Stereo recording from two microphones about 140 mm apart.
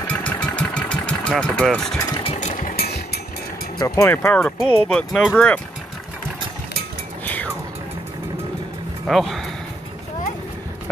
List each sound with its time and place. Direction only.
0.0 s engine: 10° left (ahead or behind)
2.2 s engine: 55° left (ahead or behind); by 2.9 s 75° left (ahead or behind)
3.7 s speech: 25° left (ahead or behind)
9.0 s speech: centre (ahead or behind)